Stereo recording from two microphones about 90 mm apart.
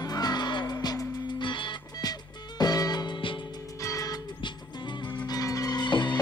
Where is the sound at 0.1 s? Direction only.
50° left (ahead or behind).